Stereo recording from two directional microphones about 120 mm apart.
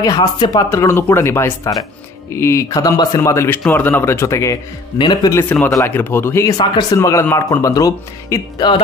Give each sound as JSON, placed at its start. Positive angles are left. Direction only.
{"t": 0.0, "sound": "speech", "side_deg": 35}
{"t": 0.7, "sound": "speech", "side_deg": 25}
{"t": 3.2, "sound": "speech", "side_deg": 20}
{"t": 4.9, "sound": "speech", "side_deg": 40}
{"t": 5.3, "sound": "speech", "side_deg": 15}
{"t": 6.5, "sound": "speech", "side_deg": 35}
{"t": 7.0, "sound": "speech", "side_deg": 25}